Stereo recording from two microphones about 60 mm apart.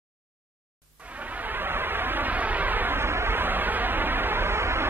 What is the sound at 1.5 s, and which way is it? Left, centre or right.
Music, right.